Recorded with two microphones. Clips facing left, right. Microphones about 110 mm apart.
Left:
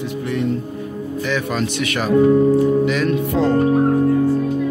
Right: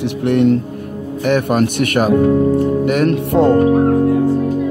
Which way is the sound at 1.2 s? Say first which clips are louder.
Right 8 dB; 55° right (ahead or behind).